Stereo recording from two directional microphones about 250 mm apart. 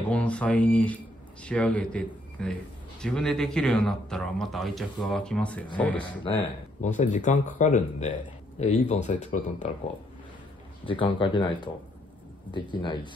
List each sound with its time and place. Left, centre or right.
0.1 s speech: centre
6.8 s speech: left
10.9 s speech: centre